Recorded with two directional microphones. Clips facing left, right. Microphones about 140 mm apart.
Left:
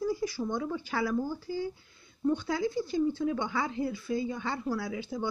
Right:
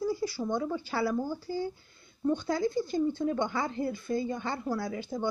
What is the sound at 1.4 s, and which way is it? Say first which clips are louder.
A woman's voice: right 1 dB; 45° right (ahead or behind).